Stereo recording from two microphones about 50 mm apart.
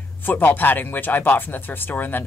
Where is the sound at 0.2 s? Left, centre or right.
Left.